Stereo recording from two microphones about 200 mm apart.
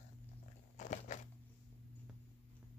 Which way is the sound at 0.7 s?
35° left (ahead or behind).